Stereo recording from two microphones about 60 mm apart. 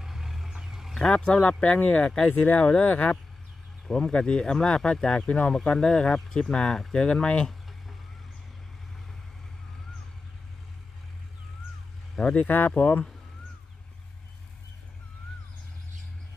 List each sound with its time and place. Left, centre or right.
0.0 s roaring cats: centre
0.9 s speech: centre; by 3.2 s left
3.8 s speech: centre
12.2 s speech: left
12.4 s speech: left